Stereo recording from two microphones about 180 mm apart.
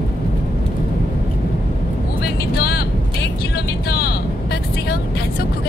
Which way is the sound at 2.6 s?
60° left (ahead or behind).